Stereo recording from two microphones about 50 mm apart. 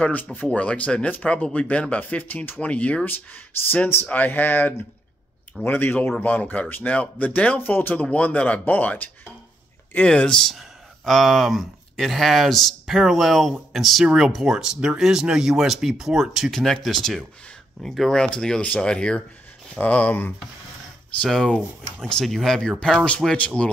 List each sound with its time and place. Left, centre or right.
0.1 s speech: left
8.0 s speech: left
8.6 s speech: left
10.0 s speech: centre
10.5 s speech: centre
14.4 s speech: centre
19.8 s speech: left
21.2 s speech: centre
23.3 s speech: left